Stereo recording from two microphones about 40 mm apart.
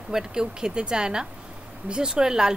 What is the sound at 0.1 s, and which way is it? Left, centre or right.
A woman's voice, centre.